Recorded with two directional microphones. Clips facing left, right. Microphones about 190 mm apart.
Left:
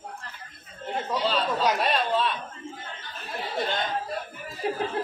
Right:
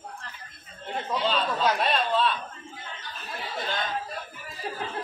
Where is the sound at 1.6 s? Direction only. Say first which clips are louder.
Left 1 dB; 15° left (ahead or behind).